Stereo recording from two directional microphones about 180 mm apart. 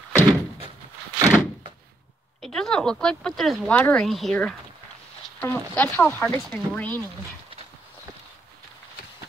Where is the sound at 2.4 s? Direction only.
5° left (ahead or behind).